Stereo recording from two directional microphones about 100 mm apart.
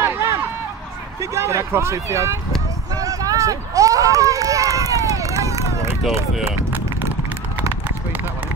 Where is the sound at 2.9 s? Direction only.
35° right (ahead or behind).